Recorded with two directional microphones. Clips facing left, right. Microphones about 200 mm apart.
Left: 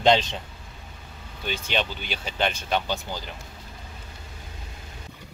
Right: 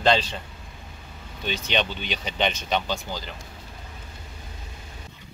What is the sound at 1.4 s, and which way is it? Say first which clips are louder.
Speech: right 1 dB; 5° left (ahead or behind).